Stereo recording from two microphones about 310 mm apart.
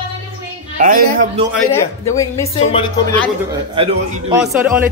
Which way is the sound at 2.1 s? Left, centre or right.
Centre.